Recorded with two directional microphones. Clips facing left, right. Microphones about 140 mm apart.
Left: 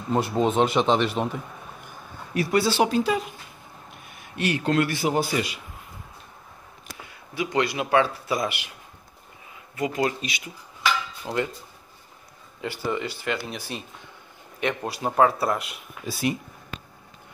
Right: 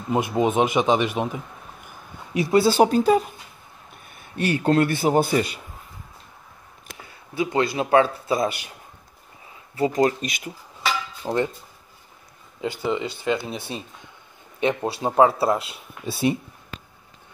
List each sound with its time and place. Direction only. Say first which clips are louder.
0.1 s speech: right 1 dB; 10° right (ahead or behind)
2.3 s a man's voice: right 4 dB; 25° right (ahead or behind)
2.7 s speech: right 5 dB; 40° right (ahead or behind)
4.5 s speech: right 3 dB; 35° right (ahead or behind)
7.3 s a man's voice: right 3 dB; 30° right (ahead or behind)
9.8 s speech: right 5 dB; 35° right (ahead or behind)
10.8 s dishes: even; 30° right (ahead or behind)
12.6 s a man's voice: right 3 dB; 20° right (ahead or behind)
14.6 s a man's voice: right 4 dB; 30° right (ahead or behind)